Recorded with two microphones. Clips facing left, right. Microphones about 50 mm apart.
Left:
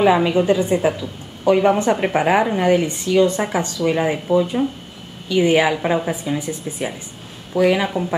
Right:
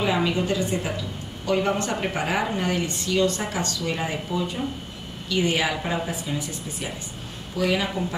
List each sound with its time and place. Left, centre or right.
0.0 s a woman's voice: centre